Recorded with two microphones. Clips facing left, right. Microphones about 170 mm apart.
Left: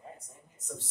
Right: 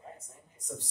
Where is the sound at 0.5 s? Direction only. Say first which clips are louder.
Right 1 dB; 15° right (ahead or behind).